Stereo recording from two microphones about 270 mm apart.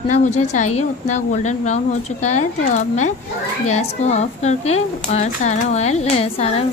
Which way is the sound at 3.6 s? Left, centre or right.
Left.